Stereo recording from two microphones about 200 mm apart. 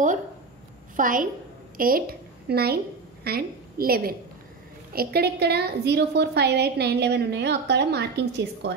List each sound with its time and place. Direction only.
0.9 s a woman's voice: 45° right (ahead or behind)